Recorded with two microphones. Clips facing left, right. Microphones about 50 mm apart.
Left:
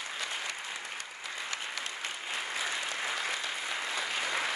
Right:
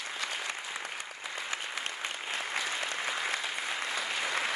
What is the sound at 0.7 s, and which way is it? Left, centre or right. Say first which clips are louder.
Applause: right 1 dB; centre.